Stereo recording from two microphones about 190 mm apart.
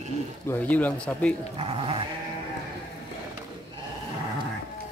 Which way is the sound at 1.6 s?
30° right (ahead or behind).